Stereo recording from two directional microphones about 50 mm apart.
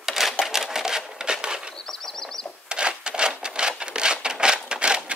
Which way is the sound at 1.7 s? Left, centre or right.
Centre.